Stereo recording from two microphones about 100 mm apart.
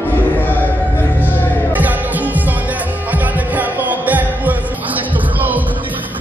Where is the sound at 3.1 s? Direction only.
15° right (ahead or behind).